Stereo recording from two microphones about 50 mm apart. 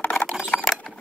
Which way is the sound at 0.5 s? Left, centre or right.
Left.